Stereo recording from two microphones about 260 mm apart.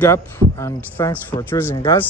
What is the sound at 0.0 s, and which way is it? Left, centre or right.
Speech, centre.